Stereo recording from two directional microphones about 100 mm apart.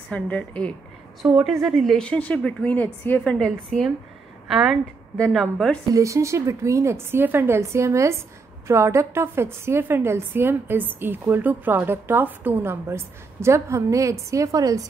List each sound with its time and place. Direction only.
0.1 s a woman's voice: 15° left (ahead or behind)
1.2 s a woman's voice: 5° right (ahead or behind)
5.9 s a woman's voice: 30° right (ahead or behind)